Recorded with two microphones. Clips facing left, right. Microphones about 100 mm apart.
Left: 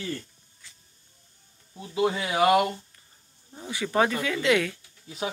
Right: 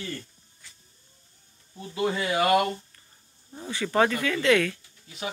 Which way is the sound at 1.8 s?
10° left (ahead or behind).